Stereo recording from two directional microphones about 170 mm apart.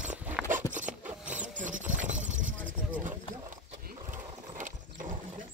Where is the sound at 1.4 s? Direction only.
50° right (ahead or behind).